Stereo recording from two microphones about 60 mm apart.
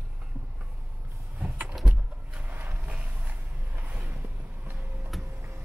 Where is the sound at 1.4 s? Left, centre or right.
Right.